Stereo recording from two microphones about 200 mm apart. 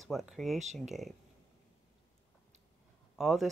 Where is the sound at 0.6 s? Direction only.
35° right (ahead or behind).